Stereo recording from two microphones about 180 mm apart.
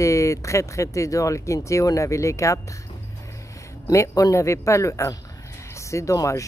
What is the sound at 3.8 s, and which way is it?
Speech, 15° left (ahead or behind).